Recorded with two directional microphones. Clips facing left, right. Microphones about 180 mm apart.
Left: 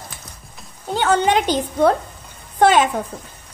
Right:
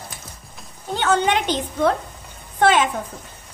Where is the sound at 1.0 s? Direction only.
35° left (ahead or behind).